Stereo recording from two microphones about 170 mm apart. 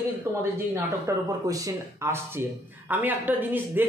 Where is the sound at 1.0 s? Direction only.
20° right (ahead or behind).